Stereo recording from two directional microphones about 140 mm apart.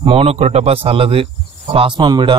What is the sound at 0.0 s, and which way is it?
A man's voice, 45° right (ahead or behind).